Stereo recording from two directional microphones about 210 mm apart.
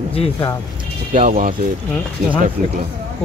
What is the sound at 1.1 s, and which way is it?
Speech, 40° right (ahead or behind).